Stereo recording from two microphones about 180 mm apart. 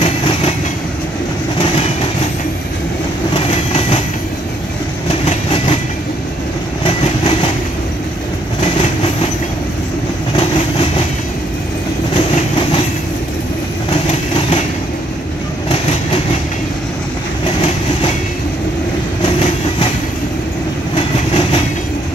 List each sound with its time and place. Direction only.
0.0 s train: 35° left (ahead or behind)
3.3 s train: 30° left (ahead or behind)
5.2 s train: 30° left (ahead or behind)
6.8 s train: 30° left (ahead or behind)
8.6 s train: 30° left (ahead or behind)
19.2 s train: 30° left (ahead or behind)
20.9 s train: 30° left (ahead or behind)